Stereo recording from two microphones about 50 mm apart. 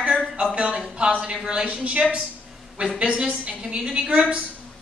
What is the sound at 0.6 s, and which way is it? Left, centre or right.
A woman's voice, centre.